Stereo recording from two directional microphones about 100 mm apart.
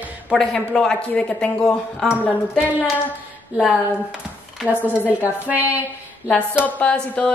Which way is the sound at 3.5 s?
10° right (ahead or behind).